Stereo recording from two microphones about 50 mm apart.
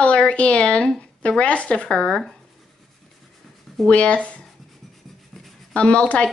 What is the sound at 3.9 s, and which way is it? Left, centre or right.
Speech, left.